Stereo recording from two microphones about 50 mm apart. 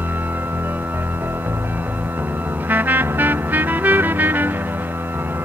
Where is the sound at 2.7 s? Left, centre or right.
Right.